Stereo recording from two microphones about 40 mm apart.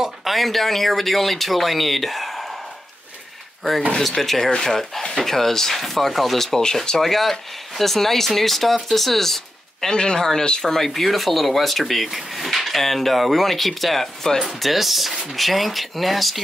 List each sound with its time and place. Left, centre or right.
0.2 s speech: centre
4.0 s speech: centre
9.8 s speech: centre
10.9 s speech: centre